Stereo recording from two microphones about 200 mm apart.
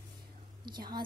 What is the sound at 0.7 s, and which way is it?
Speech, 20° right (ahead or behind).